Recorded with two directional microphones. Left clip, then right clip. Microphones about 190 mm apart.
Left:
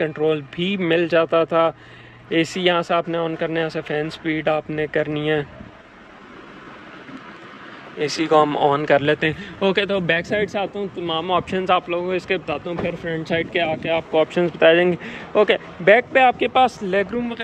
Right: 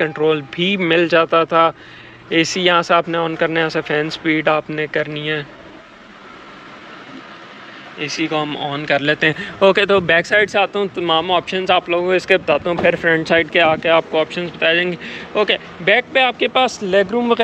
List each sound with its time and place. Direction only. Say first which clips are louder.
0.0 s speech: right 4 dB; 10° left (ahead or behind)
8.0 s speech: left 4 dB; 35° left (ahead or behind)
8.8 s speech: right 2 dB; 15° left (ahead or behind)